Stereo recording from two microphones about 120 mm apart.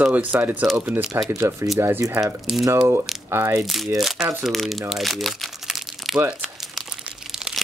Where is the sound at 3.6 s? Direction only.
Centre (ahead or behind).